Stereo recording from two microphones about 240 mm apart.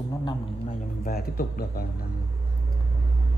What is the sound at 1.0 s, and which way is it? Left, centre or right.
Speech, left.